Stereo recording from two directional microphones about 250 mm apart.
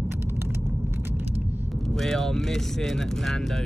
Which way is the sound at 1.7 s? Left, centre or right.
Centre.